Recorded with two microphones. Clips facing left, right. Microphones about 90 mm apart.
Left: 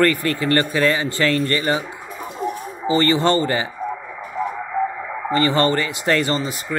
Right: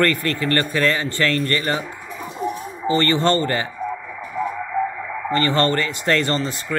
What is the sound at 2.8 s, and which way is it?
Speech, 15° left (ahead or behind).